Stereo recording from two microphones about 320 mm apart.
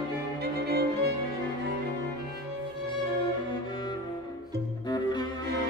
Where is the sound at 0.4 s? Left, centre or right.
Right.